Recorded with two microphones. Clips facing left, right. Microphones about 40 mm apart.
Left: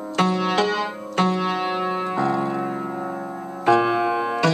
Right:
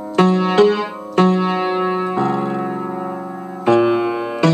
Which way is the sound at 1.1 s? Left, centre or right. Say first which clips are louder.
Right 6 dB; right.